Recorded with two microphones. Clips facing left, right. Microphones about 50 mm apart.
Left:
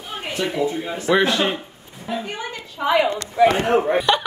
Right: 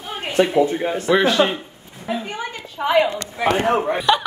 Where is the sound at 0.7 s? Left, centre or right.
Right.